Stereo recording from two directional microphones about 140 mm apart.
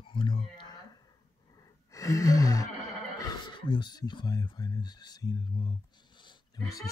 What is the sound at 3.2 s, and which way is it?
Speech, 30° left (ahead or behind).